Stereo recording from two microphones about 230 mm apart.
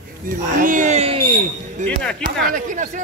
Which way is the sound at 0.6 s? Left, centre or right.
Right.